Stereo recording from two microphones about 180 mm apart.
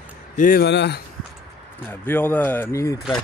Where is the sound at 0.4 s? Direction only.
55° left (ahead or behind).